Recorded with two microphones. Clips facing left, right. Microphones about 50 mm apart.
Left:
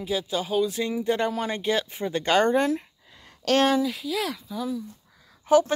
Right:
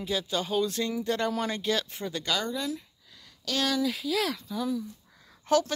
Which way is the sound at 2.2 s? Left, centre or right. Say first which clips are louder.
Left 11 dB; left.